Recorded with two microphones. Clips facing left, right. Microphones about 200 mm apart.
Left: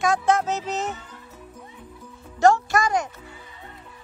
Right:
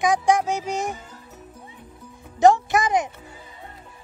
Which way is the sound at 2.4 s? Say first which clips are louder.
Right 2 dB; 20° right (ahead or behind).